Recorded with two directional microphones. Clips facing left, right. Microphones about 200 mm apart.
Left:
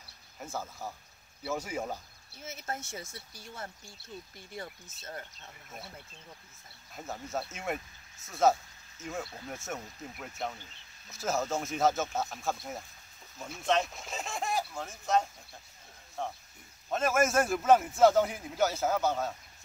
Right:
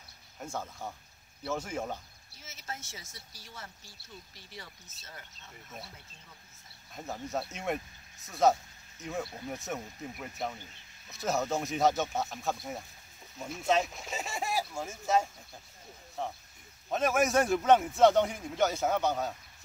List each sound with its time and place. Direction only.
0.4 s a man's voice: 5° left (ahead or behind)
2.3 s speech: 55° left (ahead or behind)
6.9 s a man's voice: centre (ahead or behind)